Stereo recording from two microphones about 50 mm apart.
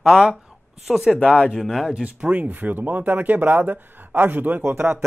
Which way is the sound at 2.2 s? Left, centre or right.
Right.